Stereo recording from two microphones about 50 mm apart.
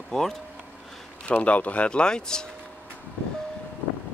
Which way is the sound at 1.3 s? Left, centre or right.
Left.